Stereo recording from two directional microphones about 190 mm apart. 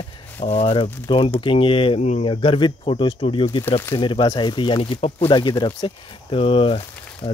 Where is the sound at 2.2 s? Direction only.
25° left (ahead or behind).